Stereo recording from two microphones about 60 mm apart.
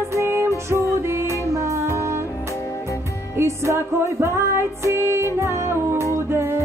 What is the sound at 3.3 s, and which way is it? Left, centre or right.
Music, right.